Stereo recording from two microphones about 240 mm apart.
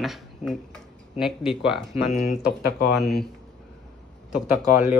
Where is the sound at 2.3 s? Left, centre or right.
Left.